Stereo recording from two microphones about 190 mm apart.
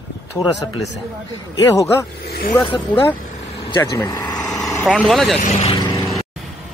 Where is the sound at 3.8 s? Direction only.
15° left (ahead or behind).